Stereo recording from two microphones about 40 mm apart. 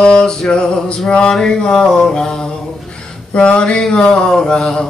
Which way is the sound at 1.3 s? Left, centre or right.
Centre.